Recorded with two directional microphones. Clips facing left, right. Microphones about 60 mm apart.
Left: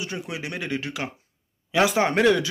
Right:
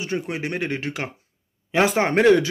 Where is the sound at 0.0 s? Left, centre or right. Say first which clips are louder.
Right 5 dB; right.